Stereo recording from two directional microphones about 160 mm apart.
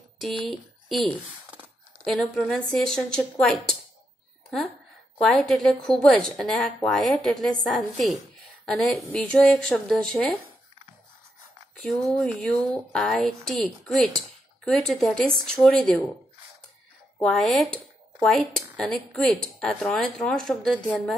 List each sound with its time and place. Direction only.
0.5 s speech: centre (ahead or behind)
2.0 s speech: centre (ahead or behind)
5.2 s speech: centre (ahead or behind)
11.7 s speech: centre (ahead or behind)
17.2 s speech: 5° left (ahead or behind)
18.8 s speech: 5° left (ahead or behind)